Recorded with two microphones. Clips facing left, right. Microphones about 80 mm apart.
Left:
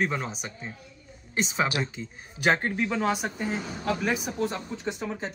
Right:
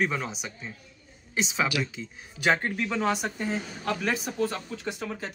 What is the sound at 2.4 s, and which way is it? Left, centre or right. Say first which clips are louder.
Speech: left 1 dB; centre.